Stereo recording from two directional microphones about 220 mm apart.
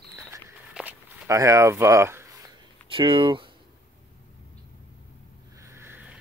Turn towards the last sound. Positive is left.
turn(degrees=-10)  # may be behind; listen again after turning